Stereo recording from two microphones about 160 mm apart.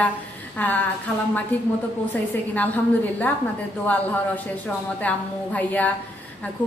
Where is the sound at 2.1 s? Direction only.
10° left (ahead or behind).